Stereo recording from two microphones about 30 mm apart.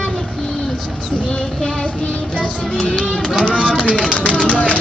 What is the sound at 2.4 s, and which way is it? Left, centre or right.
Music, left.